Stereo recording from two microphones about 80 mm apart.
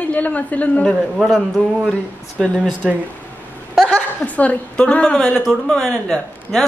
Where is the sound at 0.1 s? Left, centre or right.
Centre.